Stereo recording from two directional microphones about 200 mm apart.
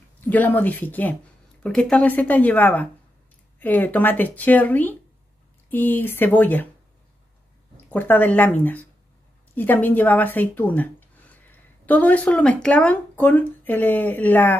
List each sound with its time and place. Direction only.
0.2 s speech: 10° left (ahead or behind)
7.9 s speech: 10° left (ahead or behind)